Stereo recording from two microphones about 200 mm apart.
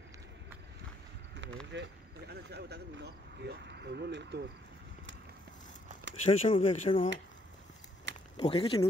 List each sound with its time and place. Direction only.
1.7 s speech: 60° right (ahead or behind)
6.2 s speech: 25° left (ahead or behind)
8.4 s speech: 25° left (ahead or behind)